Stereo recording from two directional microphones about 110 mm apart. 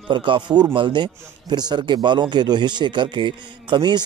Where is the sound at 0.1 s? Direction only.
50° right (ahead or behind).